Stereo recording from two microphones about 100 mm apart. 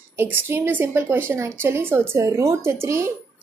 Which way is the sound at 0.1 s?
20° right (ahead or behind).